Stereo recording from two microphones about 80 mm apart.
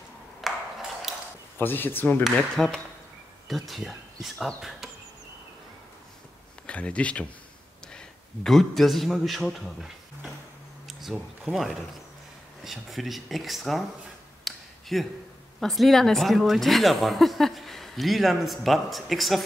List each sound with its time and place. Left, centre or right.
0.4 s ping: centre
1.6 s speech: left
2.5 s speech: centre
4.6 s insect: centre
6.6 s speech: centre
8.5 s speech: centre
14.4 s a sound: centre
15.6 s speech: centre